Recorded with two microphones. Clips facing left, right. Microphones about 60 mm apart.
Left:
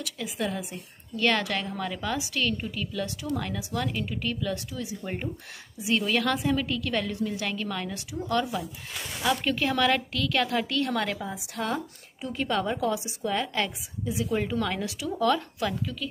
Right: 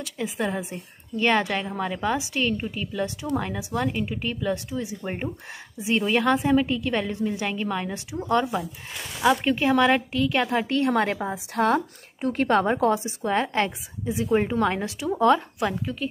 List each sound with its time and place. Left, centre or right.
0.0 s a woman's voice: right